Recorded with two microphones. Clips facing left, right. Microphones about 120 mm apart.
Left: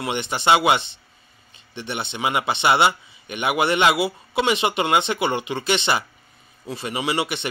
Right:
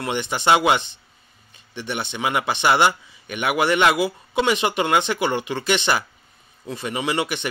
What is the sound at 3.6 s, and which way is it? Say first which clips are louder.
Speech: right 1 dB; 20° left (ahead or behind).